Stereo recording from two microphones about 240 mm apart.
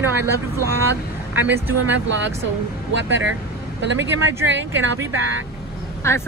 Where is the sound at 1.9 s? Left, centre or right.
Right.